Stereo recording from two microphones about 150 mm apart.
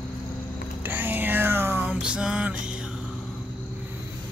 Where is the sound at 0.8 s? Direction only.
15° right (ahead or behind).